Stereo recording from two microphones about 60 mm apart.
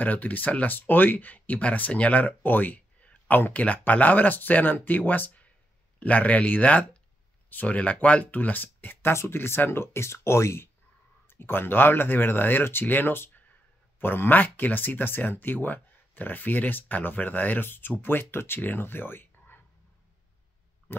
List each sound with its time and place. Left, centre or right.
0.0 s speech: left
9.1 s speech: left